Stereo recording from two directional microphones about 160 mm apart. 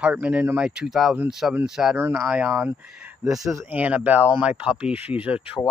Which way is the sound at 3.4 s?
20° right (ahead or behind).